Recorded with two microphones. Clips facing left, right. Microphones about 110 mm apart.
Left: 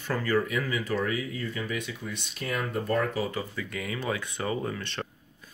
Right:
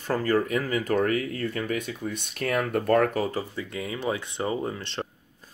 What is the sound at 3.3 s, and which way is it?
Speech, 35° right (ahead or behind).